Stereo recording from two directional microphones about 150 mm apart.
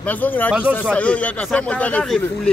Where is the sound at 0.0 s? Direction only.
10° left (ahead or behind).